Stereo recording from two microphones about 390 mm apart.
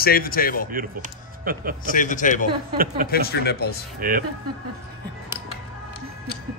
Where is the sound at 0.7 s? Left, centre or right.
Right.